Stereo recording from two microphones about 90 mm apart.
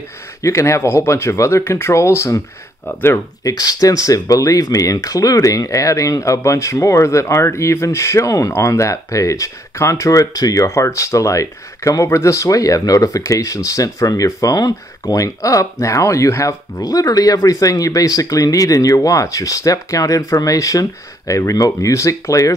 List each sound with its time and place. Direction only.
0.4 s speech: 35° left (ahead or behind)
3.4 s speech: 40° left (ahead or behind)